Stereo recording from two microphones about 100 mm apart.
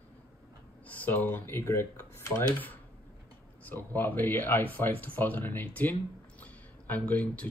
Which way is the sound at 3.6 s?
20° left (ahead or behind).